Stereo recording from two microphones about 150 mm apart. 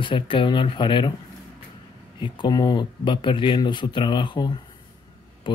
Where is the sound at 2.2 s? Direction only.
30° left (ahead or behind).